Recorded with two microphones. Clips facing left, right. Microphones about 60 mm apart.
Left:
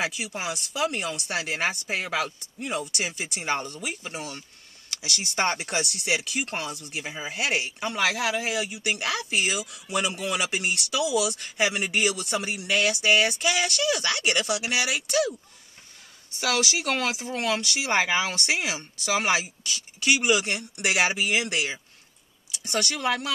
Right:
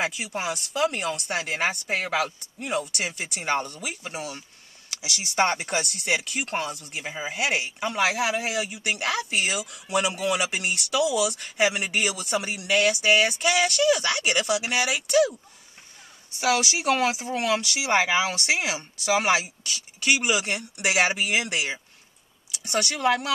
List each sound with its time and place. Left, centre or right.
0.0 s speech: centre
3.5 s speech: centre
8.0 s speech: centre
8.5 s speech: centre
16.3 s speech: centre
23.0 s speech: centre